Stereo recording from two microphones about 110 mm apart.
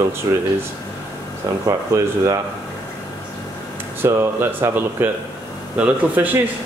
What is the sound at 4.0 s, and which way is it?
Speech, 20° right (ahead or behind).